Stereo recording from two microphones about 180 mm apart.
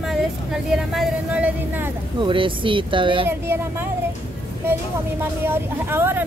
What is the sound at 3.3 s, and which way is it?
Speech, 15° right (ahead or behind).